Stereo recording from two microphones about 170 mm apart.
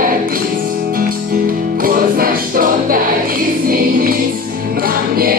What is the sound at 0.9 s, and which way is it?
Music, 55° right (ahead or behind).